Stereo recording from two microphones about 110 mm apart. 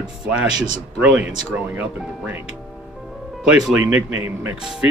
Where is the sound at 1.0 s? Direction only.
10° right (ahead or behind).